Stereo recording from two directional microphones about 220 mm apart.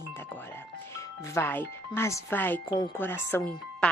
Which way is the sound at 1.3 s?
10° left (ahead or behind).